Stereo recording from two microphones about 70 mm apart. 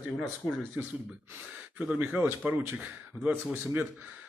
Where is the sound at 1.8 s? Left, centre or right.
Centre.